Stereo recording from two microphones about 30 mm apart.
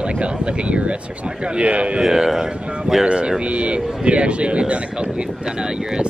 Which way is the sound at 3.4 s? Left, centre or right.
Right.